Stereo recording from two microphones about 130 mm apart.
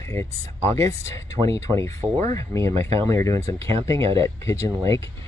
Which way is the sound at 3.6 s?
45° right (ahead or behind).